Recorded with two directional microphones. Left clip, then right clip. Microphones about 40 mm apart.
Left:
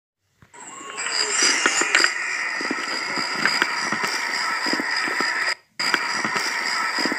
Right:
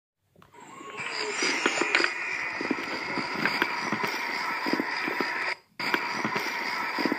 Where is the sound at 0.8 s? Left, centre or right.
Left.